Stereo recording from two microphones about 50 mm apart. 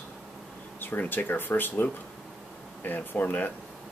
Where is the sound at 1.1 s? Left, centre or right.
Left.